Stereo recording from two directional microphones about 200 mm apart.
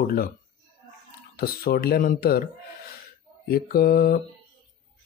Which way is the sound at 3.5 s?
50° left (ahead or behind).